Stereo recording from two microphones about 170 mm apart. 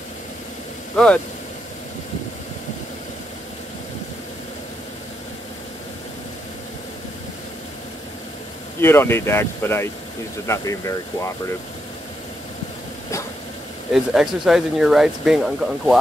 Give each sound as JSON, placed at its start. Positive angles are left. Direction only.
{"t": 0.9, "sound": "speech", "side_deg": 5}
{"t": 8.8, "sound": "speech", "side_deg": 15}
{"t": 13.9, "sound": "speech", "side_deg": 0}